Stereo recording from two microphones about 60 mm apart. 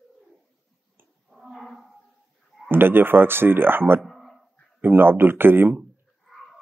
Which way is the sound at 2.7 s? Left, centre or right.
Right.